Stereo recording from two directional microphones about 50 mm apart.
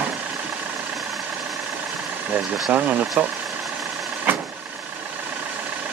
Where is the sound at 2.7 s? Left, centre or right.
Right.